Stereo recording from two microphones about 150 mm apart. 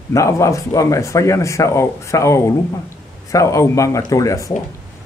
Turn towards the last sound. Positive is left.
turn(degrees=20)  # may be behind; listen again after turning